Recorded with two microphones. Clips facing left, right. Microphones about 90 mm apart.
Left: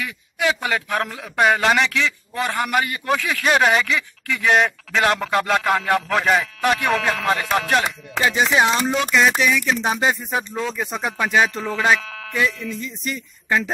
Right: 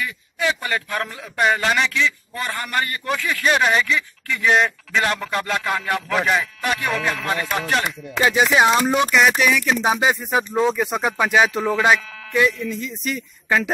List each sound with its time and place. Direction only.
0.0 s a man's voice: 90° left; by 5.9 s 65° left (ahead or behind)
5.9 s speech: 55° left (ahead or behind)
6.4 s a man's voice: 75° left (ahead or behind)
8.2 s a sound: 5° right (ahead or behind)
12.0 s music: 75° left (ahead or behind)
12.4 s a sound: centre (ahead or behind)